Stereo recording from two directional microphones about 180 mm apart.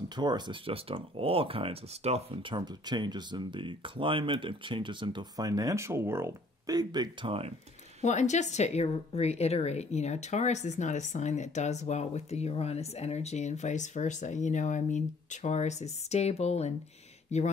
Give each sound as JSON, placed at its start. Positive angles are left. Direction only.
{"t": 0.1, "sound": "speech", "side_deg": -25}
{"t": 8.0, "sound": "a woman's voice", "side_deg": 40}